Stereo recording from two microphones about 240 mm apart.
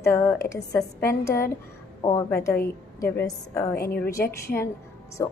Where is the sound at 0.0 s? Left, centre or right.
Centre.